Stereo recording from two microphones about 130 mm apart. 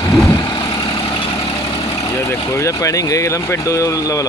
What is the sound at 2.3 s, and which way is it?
Speech, 25° left (ahead or behind).